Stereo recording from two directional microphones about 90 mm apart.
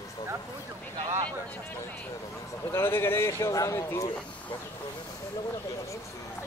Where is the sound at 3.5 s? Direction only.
40° left (ahead or behind).